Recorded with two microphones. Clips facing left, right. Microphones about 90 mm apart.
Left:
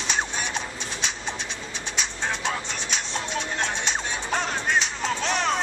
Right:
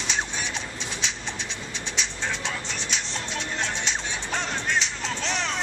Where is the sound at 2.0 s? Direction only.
45° left (ahead or behind).